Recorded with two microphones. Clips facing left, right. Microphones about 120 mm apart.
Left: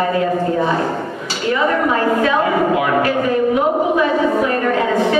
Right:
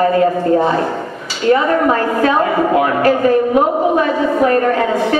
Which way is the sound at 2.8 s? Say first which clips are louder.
Right 3 dB; 40° right (ahead or behind).